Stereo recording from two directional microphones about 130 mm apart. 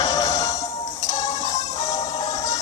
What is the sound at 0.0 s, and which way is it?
Music, 25° left (ahead or behind).